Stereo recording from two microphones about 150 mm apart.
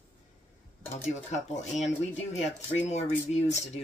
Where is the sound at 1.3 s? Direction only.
50° left (ahead or behind).